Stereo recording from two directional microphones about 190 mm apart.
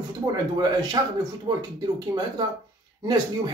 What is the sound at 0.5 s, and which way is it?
Speech, 20° right (ahead or behind).